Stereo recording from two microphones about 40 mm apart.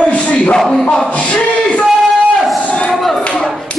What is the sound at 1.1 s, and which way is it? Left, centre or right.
Speech, left.